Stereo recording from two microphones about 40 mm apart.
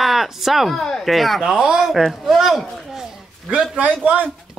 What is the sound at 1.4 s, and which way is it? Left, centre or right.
Speech, centre.